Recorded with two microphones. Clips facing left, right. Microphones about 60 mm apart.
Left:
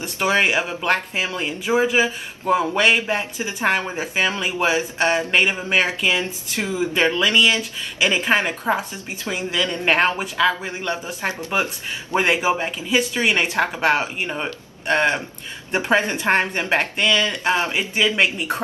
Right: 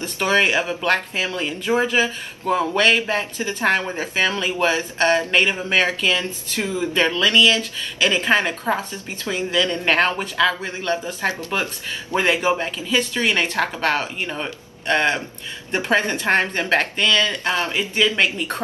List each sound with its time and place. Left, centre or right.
0.0 s speech: centre